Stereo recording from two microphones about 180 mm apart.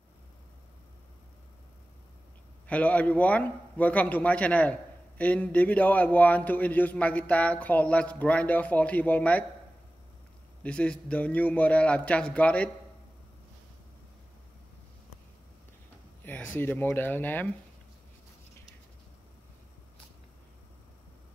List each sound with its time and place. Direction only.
2.7 s a man's voice: 10° left (ahead or behind)
10.6 s a man's voice: 5° left (ahead or behind)
16.3 s a man's voice: 10° left (ahead or behind)